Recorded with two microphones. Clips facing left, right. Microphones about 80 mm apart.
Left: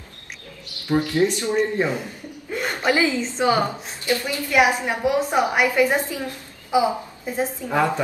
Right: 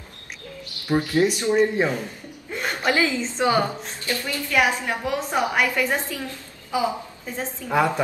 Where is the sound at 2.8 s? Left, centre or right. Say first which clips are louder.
Left 2 dB; centre.